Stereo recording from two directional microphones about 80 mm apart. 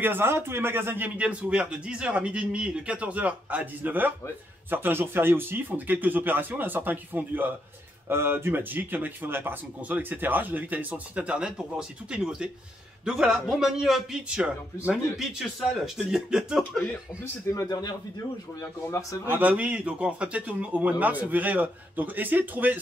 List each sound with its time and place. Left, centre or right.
0.0 s a man's voice: right
15.1 s speech: centre
17.2 s speech: left
17.6 s a man's voice: left
18.6 s speech: left
19.3 s speech: right